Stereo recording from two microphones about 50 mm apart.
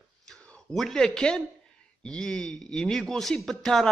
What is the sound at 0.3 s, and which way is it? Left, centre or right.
A man's voice, centre.